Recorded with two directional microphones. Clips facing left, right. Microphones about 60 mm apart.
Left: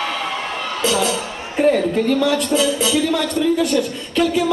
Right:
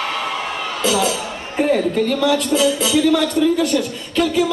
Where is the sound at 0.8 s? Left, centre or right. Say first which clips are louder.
Right 1 dB; centre.